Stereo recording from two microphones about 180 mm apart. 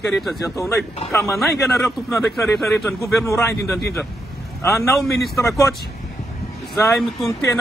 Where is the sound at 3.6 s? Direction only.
65° left (ahead or behind).